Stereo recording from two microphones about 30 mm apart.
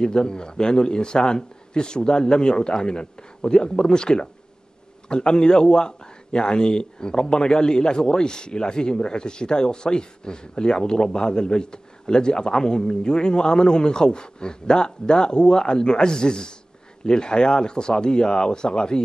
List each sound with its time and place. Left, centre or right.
0.0 s a man's voice: left